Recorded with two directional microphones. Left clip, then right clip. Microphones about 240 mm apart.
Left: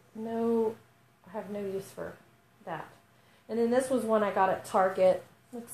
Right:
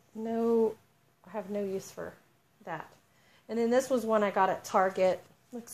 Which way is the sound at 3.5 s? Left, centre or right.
Right.